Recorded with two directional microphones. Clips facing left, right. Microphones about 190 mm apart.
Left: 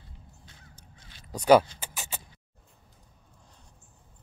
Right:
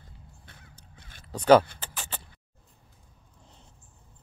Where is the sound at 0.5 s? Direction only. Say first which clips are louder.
Right 1 dB; 55° right (ahead or behind).